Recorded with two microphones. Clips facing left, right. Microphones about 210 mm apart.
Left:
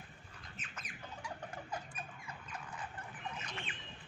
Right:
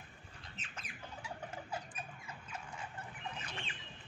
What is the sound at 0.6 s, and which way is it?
Squawk, 30° right (ahead or behind).